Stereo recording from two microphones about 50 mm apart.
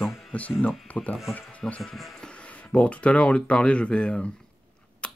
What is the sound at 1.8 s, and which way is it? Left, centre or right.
Speech, centre.